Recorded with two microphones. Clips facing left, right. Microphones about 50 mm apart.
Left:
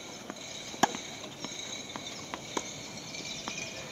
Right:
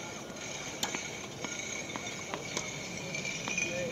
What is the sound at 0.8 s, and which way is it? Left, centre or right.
Chop, left.